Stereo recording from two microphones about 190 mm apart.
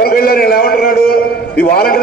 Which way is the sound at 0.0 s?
55° left (ahead or behind).